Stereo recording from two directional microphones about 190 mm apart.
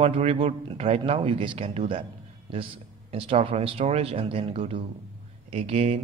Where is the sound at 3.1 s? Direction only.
30° right (ahead or behind).